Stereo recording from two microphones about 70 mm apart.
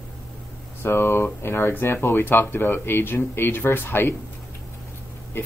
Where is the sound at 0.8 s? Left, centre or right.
Left.